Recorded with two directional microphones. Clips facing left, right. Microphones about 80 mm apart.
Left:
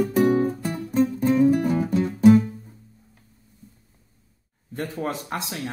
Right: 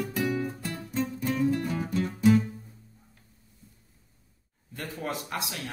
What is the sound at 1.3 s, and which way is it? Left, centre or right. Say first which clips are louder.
Music: left 8 dB; left.